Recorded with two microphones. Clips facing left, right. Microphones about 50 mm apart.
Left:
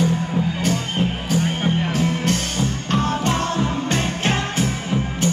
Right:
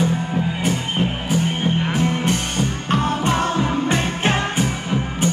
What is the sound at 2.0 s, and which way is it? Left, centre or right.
Music, right.